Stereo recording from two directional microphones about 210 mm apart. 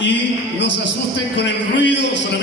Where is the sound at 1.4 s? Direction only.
55° left (ahead or behind).